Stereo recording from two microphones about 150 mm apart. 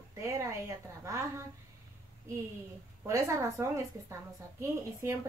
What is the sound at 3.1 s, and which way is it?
Speech, 20° right (ahead or behind).